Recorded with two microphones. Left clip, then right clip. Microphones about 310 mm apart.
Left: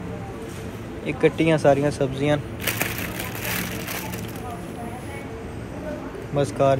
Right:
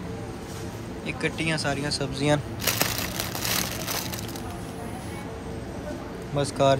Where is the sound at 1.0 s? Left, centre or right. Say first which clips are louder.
Left 8 dB; right.